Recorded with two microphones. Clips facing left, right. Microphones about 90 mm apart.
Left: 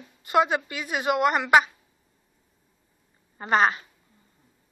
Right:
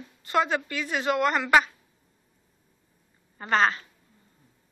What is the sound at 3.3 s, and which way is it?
Speech, 15° left (ahead or behind).